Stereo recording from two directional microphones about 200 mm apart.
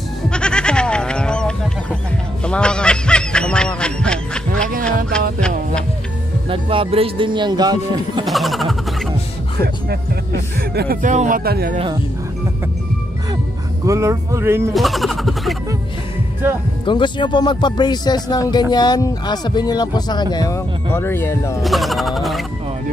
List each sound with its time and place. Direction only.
0.3 s goat: 5° left (ahead or behind)
2.4 s goose: 5° left (ahead or behind)
6.5 s speech: 25° right (ahead or behind)
8.3 s a sound: centre (ahead or behind)
9.6 s speech: 50° right (ahead or behind)
13.8 s speech: 15° right (ahead or behind)
14.7 s music: centre (ahead or behind)
16.8 s speech: 25° left (ahead or behind)
21.6 s speech: centre (ahead or behind)